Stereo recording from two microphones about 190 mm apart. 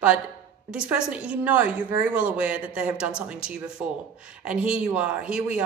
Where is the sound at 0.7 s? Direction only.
5° right (ahead or behind).